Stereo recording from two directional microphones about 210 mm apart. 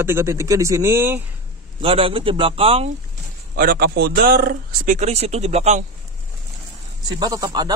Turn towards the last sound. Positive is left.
turn(degrees=-20)  # may be behind; listen again after turning